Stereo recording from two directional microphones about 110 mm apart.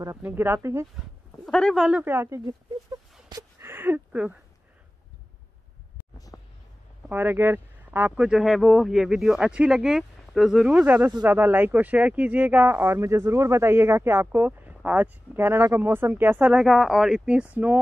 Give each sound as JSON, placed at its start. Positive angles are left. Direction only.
{"t": 0.2, "sound": "speech", "side_deg": -20}
{"t": 1.4, "sound": "speech", "side_deg": 5}
{"t": 1.8, "sound": "speech", "side_deg": -10}
{"t": 2.4, "sound": "a sound", "side_deg": -35}
{"t": 3.6, "sound": "speech", "side_deg": -20}
{"t": 6.3, "sound": "a sound", "side_deg": 15}
{"t": 7.1, "sound": "speech", "side_deg": -20}
{"t": 8.3, "sound": "speech", "side_deg": -5}
{"t": 16.5, "sound": "speech", "side_deg": 0}